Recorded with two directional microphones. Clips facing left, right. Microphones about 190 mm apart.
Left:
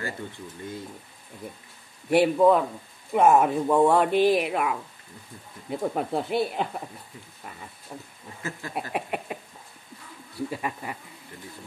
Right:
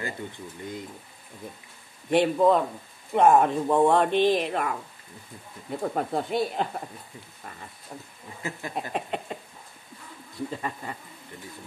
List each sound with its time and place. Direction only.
2.0 s speech: 5° left (ahead or behind)
7.9 s speech: centre (ahead or behind)
8.4 s a sound: 15° right (ahead or behind)
8.9 s speech: 10° left (ahead or behind)